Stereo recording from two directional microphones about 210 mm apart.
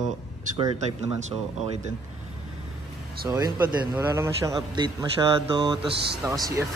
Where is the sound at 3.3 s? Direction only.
15° right (ahead or behind).